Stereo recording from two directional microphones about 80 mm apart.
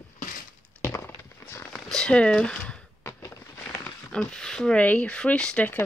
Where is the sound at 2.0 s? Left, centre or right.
Centre.